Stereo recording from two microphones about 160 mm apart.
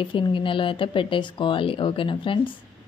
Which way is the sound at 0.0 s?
30° left (ahead or behind).